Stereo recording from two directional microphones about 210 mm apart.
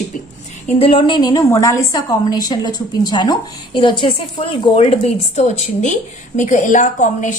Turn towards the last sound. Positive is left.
turn(degrees=35)  # may be behind; listen again after turning